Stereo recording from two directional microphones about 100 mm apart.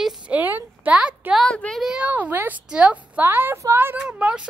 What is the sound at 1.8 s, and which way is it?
A woman's voice, 10° right (ahead or behind).